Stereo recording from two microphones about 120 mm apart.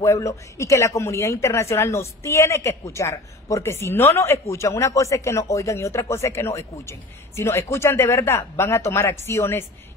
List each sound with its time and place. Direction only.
0.0 s speech: 25° left (ahead or behind)